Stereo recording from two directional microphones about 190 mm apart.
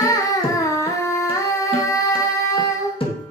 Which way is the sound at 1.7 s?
20° left (ahead or behind).